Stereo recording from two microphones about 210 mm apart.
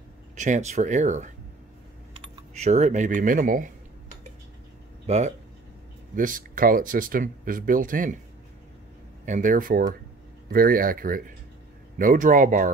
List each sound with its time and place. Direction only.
0.4 s speech: 35° right (ahead or behind)
2.3 s speech: 30° right (ahead or behind)
5.0 s speech: 30° right (ahead or behind)
9.2 s speech: 35° right (ahead or behind)